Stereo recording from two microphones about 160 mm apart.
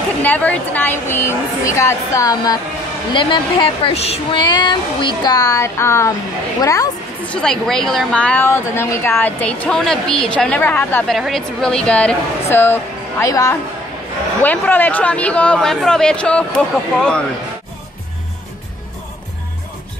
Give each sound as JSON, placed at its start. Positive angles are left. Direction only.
{"t": 0.2, "sound": "a woman's voice", "side_deg": 10}
{"t": 4.4, "sound": "speech", "side_deg": 30}
{"t": 7.2, "sound": "a woman's voice", "side_deg": 5}
{"t": 11.1, "sound": "a woman's voice", "side_deg": 0}